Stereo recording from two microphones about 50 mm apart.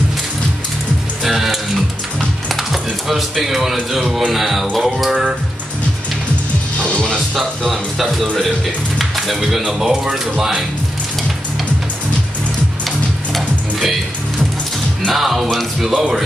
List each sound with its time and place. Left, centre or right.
1.2 s music: centre
6.8 s music: centre
7.3 s music: centre
9.7 s speech: centre
13.3 s music: centre
15.0 s music: centre